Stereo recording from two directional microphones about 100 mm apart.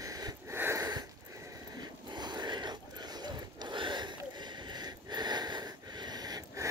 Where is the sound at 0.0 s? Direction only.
35° right (ahead or behind).